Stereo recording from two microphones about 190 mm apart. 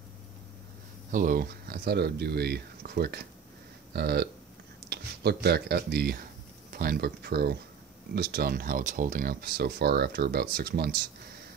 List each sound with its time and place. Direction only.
1.1 s speech: 45° right (ahead or behind)